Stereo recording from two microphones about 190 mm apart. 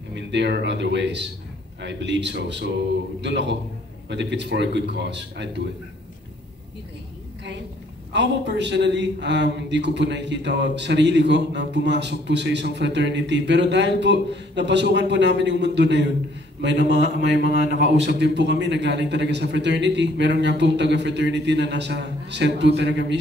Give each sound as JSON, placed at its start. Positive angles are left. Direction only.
{"t": 0.1, "sound": "a man's voice", "side_deg": -65}
{"t": 8.1, "sound": "a man's voice", "side_deg": -65}